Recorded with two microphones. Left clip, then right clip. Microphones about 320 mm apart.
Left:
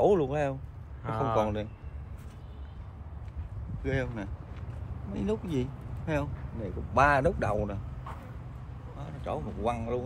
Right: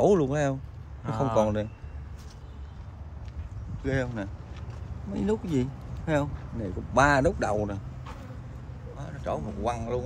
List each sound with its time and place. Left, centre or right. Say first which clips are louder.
0.0 s speech: right 2 dB; right
1.0 s a man's voice: right 2 dB; centre
3.8 s speech: right 3 dB; right
8.9 s speech: right 3 dB; right